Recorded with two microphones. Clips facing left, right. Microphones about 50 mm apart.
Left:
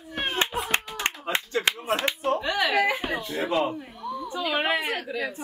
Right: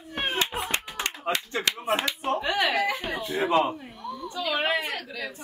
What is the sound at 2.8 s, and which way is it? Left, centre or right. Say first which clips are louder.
Speech: left 3 dB; left.